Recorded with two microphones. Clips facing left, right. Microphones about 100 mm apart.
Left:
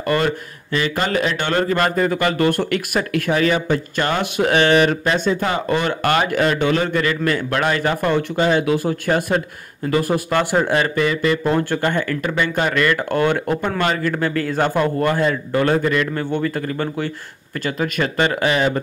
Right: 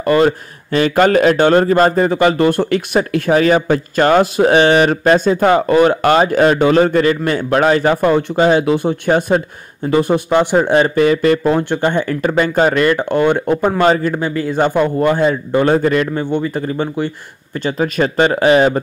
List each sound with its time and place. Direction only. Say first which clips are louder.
0.0 s speech: right 7 dB; 35° right (ahead or behind)
11.5 s speech: right 4 dB; 20° right (ahead or behind)
13.6 s speech: right 7 dB; 35° right (ahead or behind)
16.2 s speech: right 3 dB; 20° right (ahead or behind)
17.6 s speech: right 5 dB; 30° right (ahead or behind)